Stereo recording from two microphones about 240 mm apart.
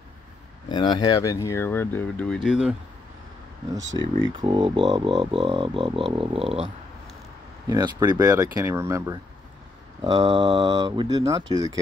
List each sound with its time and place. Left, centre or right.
0.7 s speech: centre
4.2 s speech: centre